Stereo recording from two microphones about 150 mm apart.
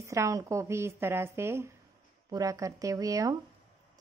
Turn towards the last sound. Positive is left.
turn(degrees=-25)  # may be behind; listen again after turning